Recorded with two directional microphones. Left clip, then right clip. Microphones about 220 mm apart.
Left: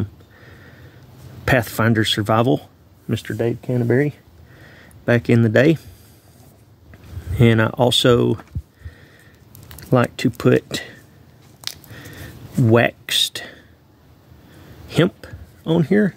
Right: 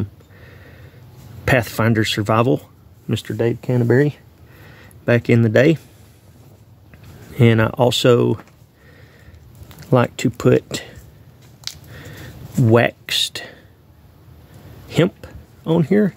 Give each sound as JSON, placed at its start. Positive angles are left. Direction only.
{"t": 0.0, "sound": "sniff", "side_deg": 0}
{"t": 1.4, "sound": "speech", "side_deg": 0}
{"t": 4.6, "sound": "a sound", "side_deg": 0}
{"t": 7.3, "sound": "speech", "side_deg": 0}
{"t": 9.7, "sound": "speech", "side_deg": 0}
{"t": 11.9, "sound": "a sound", "side_deg": 0}
{"t": 14.9, "sound": "speech", "side_deg": 0}